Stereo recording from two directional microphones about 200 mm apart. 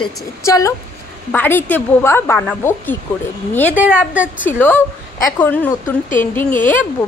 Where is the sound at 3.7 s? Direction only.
5° right (ahead or behind).